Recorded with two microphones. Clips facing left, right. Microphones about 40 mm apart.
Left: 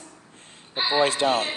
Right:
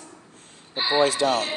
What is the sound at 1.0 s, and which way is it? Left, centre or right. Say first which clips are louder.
Speech: even; left.